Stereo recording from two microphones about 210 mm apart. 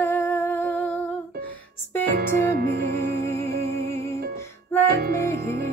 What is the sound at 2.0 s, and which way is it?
Music, 50° right (ahead or behind).